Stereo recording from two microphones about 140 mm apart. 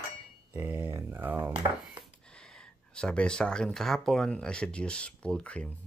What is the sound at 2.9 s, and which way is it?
Speech, 5° left (ahead or behind).